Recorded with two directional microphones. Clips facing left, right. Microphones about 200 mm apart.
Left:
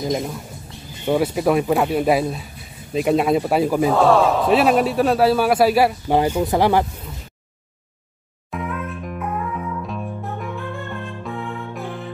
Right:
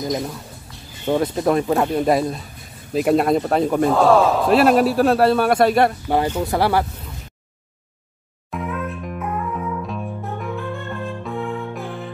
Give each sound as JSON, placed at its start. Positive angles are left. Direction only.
{"t": 1.0, "sound": "a man's voice", "side_deg": 10}
{"t": 8.5, "sound": "music", "side_deg": 0}